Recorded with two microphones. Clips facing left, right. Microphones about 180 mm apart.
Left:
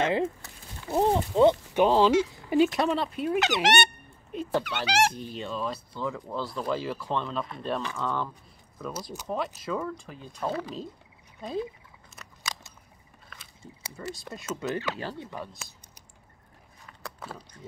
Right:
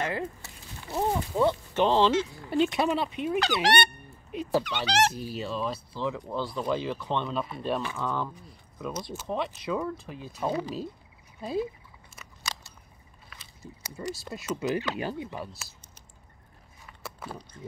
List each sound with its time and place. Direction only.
0.0 s speech: 25° left (ahead or behind)
2.7 s speech: centre (ahead or behind)
3.6 s speech: 20° left (ahead or behind)
4.3 s speech: 5° right (ahead or behind)
4.6 s speech: 10° left (ahead or behind)
5.1 s speech: 5° right (ahead or behind)
14.0 s speech: 5° right (ahead or behind)
17.2 s speech: centre (ahead or behind)